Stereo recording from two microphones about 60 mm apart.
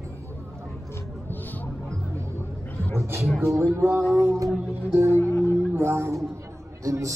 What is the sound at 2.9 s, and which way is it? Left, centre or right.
Speech, right.